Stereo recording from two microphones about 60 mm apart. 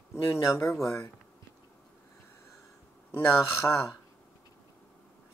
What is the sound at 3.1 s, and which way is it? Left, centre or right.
Speech, left.